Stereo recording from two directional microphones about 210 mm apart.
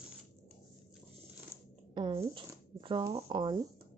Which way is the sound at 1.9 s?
20° right (ahead or behind).